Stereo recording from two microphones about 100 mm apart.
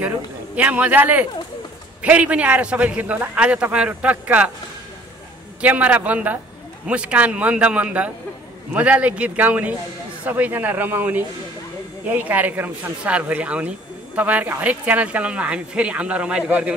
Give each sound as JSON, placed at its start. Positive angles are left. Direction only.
{"t": 0.6, "sound": "a man's voice", "side_deg": -15}
{"t": 5.6, "sound": "a man's voice", "side_deg": -15}